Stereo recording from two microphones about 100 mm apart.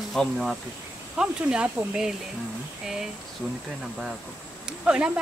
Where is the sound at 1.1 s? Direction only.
10° right (ahead or behind).